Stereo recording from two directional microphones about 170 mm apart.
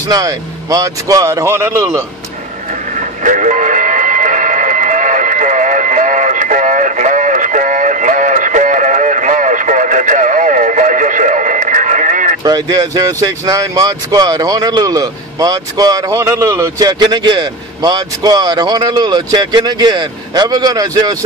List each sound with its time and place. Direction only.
0.1 s speech: 20° right (ahead or behind)
3.3 s a sound: 45° right (ahead or behind)
12.4 s speech: 20° right (ahead or behind)